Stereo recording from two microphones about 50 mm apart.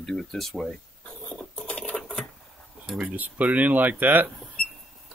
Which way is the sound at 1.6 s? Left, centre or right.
Left.